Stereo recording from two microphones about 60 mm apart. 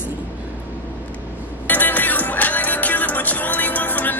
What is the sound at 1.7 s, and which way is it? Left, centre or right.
Music, left.